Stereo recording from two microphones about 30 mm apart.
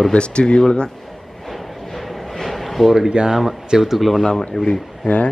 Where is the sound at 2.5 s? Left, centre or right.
Centre.